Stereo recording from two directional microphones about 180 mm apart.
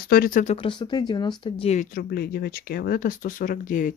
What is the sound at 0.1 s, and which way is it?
Speech, 50° left (ahead or behind).